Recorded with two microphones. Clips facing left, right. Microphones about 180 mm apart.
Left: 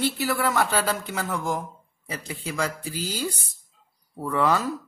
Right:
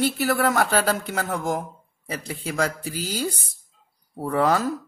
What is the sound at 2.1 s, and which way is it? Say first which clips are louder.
Speech: right 3 dB; 40° right (ahead or behind).